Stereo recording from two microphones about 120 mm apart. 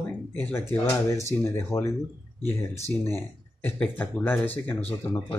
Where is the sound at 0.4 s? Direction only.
20° left (ahead or behind).